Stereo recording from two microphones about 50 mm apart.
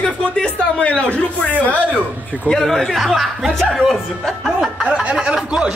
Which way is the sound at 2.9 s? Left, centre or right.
Centre.